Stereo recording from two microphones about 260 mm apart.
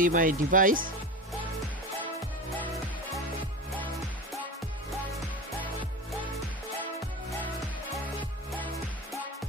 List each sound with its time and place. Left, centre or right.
0.0 s speech: right